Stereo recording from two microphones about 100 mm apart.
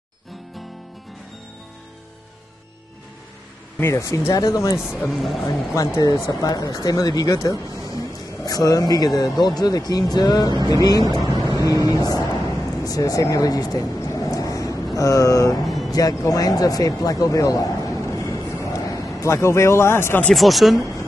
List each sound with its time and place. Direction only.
3.7 s speech: 25° left (ahead or behind)
4.7 s speech: 5° right (ahead or behind)
5.8 s speech: 35° left (ahead or behind)
12.8 s a sound: 35° left (ahead or behind)
15.0 s speech: 35° left (ahead or behind)
15.6 s music: centre (ahead or behind)
15.9 s speech: 40° left (ahead or behind)
20.3 s speech: centre (ahead or behind)